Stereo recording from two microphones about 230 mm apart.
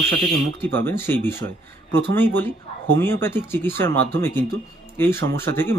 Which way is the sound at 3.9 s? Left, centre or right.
Right.